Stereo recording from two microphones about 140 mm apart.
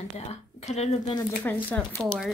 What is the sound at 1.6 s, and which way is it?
Speech, 10° left (ahead or behind).